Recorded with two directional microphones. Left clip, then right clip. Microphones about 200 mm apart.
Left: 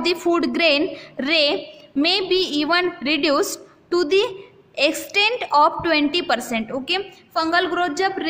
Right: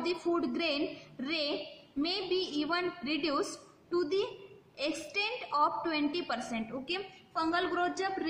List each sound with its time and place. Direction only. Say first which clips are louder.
0.0 s a woman's voice: left 12 dB; 50° left (ahead or behind)